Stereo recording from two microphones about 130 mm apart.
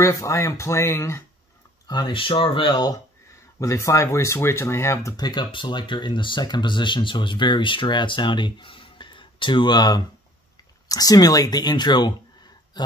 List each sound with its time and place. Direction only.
0.0 s speech: 25° left (ahead or behind)
1.9 s speech: 35° left (ahead or behind)
3.5 s speech: 25° left (ahead or behind)
12.7 s a sound: 35° left (ahead or behind)